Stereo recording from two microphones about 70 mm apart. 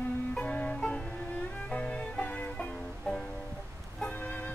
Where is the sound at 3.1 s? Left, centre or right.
Centre.